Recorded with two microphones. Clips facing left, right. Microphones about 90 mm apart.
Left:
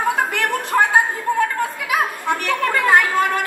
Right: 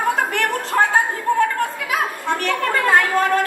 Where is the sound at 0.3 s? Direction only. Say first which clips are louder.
Left 1 dB; 15° left (ahead or behind).